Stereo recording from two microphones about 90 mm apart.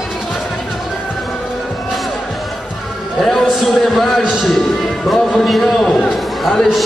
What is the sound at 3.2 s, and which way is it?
A man's voice, 5° left (ahead or behind).